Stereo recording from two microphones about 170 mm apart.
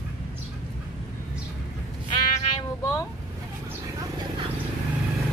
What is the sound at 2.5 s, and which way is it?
Cat, 20° left (ahead or behind).